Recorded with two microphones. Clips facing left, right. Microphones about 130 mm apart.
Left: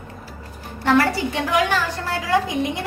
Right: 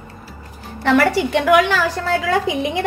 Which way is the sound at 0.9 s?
75° right (ahead or behind).